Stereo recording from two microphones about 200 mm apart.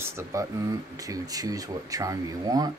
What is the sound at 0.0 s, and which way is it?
Speech, 15° right (ahead or behind).